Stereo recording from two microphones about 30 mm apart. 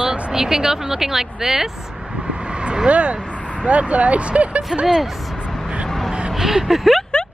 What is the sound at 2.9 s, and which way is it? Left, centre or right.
Speech, right.